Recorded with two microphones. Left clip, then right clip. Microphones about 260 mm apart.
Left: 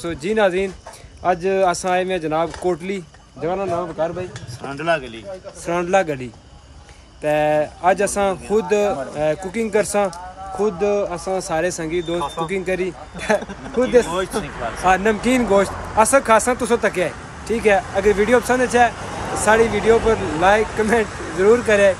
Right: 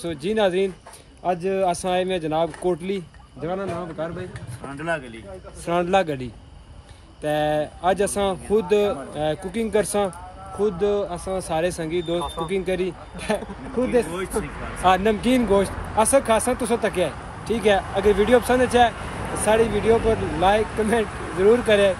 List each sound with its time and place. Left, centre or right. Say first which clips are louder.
0.0 s speech: left 4 dB; centre
5.7 s speech: left 2 dB; centre
12.2 s speech: left 4 dB; left
12.5 s speech: right 1 dB; centre